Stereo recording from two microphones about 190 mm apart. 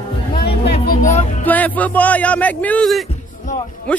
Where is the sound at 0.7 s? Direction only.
40° left (ahead or behind).